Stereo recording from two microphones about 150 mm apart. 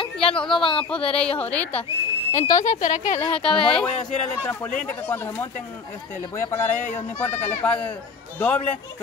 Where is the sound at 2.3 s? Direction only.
55° left (ahead or behind).